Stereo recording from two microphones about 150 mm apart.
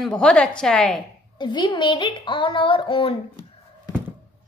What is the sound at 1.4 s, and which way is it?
Child singing, 30° left (ahead or behind).